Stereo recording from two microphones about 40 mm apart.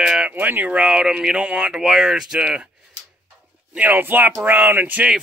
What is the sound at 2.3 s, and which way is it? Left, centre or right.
Speech, right.